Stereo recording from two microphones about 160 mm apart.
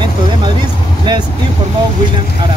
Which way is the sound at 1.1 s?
30° right (ahead or behind).